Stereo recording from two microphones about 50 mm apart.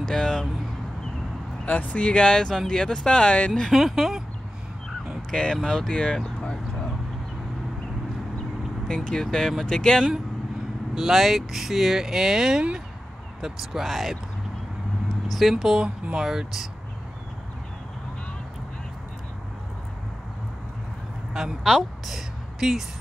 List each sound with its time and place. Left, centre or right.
0.0 s a sound: centre
1.7 s speech: left
3.7 s speech: centre
5.3 s speech: centre
6.2 s a sound: centre
8.8 s speech: centre
11.0 s speech: centre
15.4 s speech: centre
15.8 s speech: centre
21.3 s a sound: centre
22.0 s speech: centre